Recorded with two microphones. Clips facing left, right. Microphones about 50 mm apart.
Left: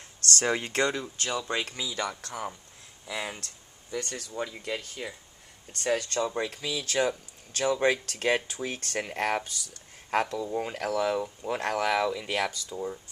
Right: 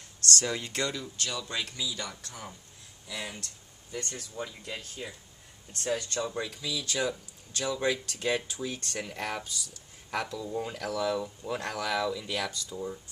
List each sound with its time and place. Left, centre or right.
0.4 s speech: left
3.9 s speech: left
4.3 s speech: left
8.4 s speech: left
10.5 s speech: left
12.7 s speech: centre